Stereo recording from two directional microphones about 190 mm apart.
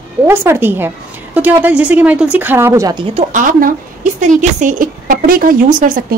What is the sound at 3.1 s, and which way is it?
A woman's voice, 40° right (ahead or behind).